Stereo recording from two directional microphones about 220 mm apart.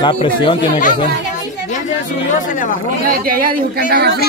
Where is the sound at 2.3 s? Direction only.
35° left (ahead or behind).